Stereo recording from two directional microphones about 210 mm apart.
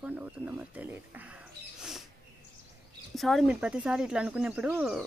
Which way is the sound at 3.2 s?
Centre (ahead or behind).